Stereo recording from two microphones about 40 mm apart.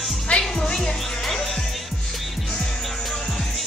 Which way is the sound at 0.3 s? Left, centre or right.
Left.